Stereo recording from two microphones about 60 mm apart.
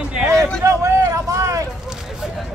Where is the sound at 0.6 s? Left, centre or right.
Right.